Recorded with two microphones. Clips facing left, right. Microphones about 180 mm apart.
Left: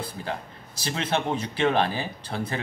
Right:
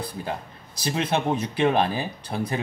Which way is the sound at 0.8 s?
15° right (ahead or behind).